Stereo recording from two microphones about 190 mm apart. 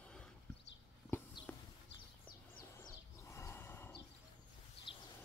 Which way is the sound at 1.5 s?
10° left (ahead or behind).